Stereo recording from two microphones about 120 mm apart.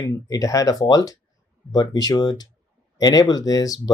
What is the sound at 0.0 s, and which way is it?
Speech, 30° left (ahead or behind).